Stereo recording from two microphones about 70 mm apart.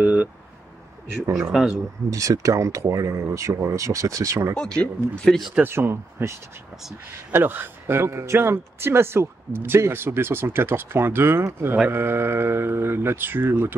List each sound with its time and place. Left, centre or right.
0.0 s a sound: right
1.4 s speech: centre
2.0 s speech: right
4.6 s speech: centre
5.6 s speech: right
7.3 s speech: right